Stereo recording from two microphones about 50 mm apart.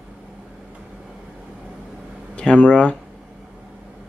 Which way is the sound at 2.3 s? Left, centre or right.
Left.